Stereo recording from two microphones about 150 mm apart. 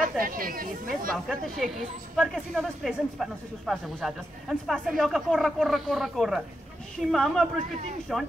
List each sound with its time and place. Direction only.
0.2 s speech: 70° right (ahead or behind)
1.1 s speech: centre (ahead or behind)